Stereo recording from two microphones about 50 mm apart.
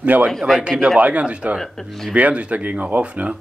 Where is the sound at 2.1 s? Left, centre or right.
Right.